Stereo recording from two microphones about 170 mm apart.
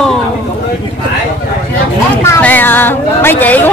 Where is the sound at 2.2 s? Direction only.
10° left (ahead or behind).